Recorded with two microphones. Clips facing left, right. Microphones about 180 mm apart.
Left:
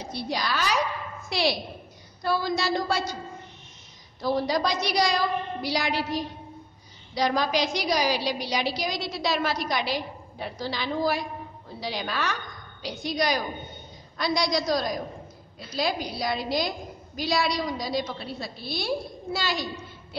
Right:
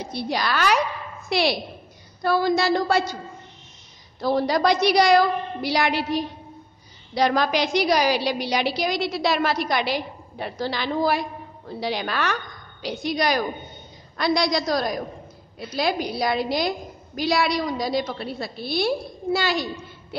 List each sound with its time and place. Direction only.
0.1 s a woman's voice: 65° right (ahead or behind)
4.2 s a woman's voice: 65° right (ahead or behind)